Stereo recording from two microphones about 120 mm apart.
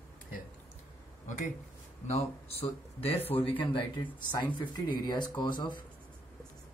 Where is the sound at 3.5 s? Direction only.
45° left (ahead or behind).